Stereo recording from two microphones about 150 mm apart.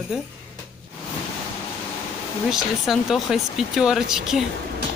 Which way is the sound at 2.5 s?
Centre (ahead or behind).